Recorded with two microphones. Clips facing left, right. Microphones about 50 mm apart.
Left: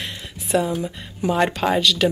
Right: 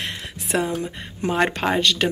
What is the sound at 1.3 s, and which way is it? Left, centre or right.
Speech, right.